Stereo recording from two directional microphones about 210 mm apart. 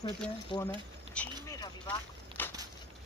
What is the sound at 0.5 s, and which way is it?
Speech, 25° left (ahead or behind).